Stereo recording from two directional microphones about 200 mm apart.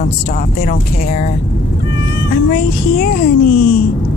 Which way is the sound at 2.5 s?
45° left (ahead or behind).